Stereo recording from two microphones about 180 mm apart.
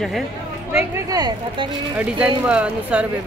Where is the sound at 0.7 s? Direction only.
20° right (ahead or behind).